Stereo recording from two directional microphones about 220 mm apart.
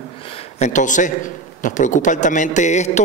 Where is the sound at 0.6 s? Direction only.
35° left (ahead or behind).